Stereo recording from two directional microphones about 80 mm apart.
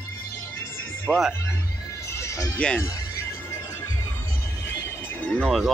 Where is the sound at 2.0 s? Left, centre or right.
Left.